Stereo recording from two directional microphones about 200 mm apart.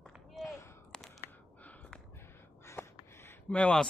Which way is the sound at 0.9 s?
5° left (ahead or behind).